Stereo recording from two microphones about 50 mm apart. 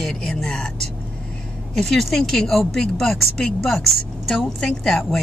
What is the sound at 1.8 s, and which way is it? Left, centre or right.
Speech, centre.